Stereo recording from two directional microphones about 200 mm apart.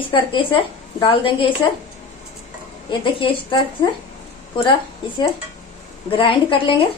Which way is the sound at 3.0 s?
25° left (ahead or behind).